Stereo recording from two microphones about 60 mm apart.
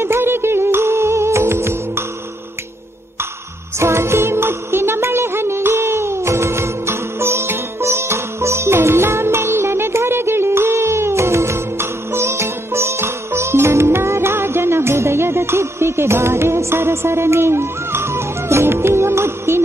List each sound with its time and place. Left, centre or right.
0.0 s music: right
3.8 s music: right